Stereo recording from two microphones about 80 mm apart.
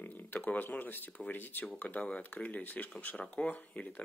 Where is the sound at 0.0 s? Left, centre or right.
Left.